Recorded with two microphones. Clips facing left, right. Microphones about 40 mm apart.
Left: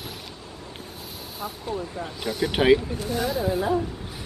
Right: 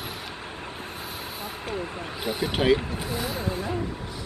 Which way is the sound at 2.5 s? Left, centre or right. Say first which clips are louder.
Left 4 dB; centre.